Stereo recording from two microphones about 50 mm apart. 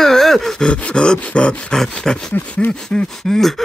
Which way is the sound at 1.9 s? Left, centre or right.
Centre.